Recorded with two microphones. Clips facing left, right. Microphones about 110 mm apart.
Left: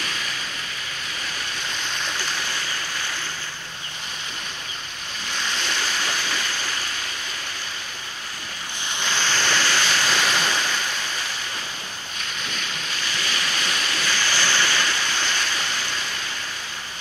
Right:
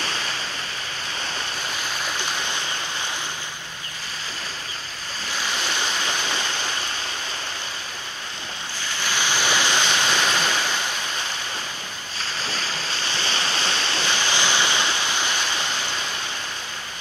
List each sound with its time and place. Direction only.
0.0 s waves: 35° right (ahead or behind)
9.1 s waves: 15° right (ahead or behind)
10.0 s waves: 5° right (ahead or behind)
12.2 s waves: 35° right (ahead or behind)